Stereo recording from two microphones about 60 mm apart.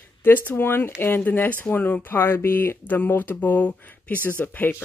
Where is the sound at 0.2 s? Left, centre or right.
Left.